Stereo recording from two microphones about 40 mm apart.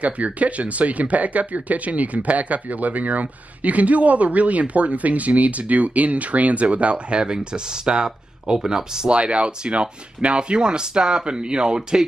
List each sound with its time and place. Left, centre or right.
0.0 s speech: right; by 9.1 s centre
9.1 s speech: right